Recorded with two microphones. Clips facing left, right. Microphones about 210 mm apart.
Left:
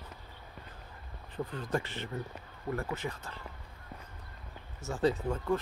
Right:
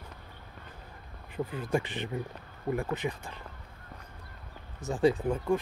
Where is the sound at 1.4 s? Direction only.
10° right (ahead or behind).